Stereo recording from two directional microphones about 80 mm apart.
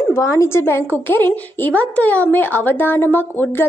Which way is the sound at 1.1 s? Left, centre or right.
Left.